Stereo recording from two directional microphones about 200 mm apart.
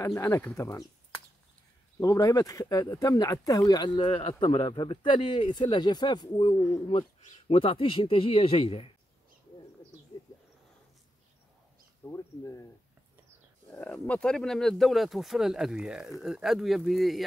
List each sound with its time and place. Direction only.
0.0 s speech: 15° left (ahead or behind)
2.0 s speech: 15° left (ahead or behind)
12.0 s speech: 15° left (ahead or behind)
13.7 s speech: 5° left (ahead or behind)